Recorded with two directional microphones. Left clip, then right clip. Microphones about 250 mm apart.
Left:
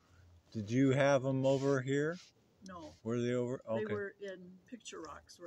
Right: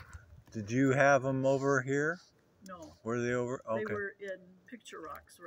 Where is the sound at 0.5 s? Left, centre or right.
Centre.